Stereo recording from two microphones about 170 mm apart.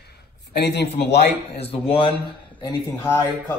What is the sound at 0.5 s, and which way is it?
Speech, 75° left (ahead or behind).